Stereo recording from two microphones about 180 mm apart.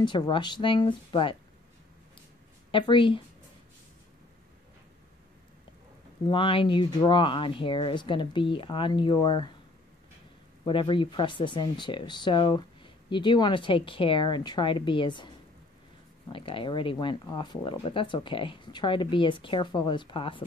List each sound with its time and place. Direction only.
0.0 s speech: 25° left (ahead or behind)
2.7 s speech: 30° left (ahead or behind)
6.3 s speech: 30° left (ahead or behind)
10.6 s speech: 25° left (ahead or behind)